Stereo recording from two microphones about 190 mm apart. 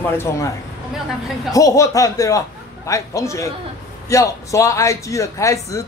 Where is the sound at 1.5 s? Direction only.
15° left (ahead or behind).